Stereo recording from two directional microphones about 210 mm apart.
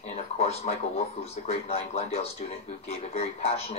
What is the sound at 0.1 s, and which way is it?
Speech, 30° left (ahead or behind).